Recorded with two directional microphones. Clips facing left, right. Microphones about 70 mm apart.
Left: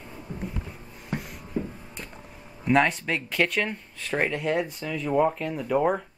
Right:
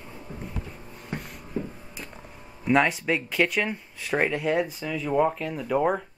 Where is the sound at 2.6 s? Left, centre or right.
Centre.